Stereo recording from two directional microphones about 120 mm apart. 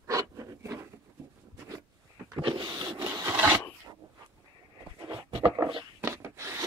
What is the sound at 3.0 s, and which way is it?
Rub, 30° right (ahead or behind).